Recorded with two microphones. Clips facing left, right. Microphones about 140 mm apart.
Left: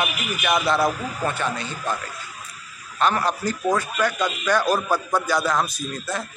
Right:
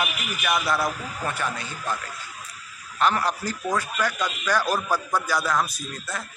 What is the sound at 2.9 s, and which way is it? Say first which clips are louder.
Speech: left 2 dB; 20° left (ahead or behind).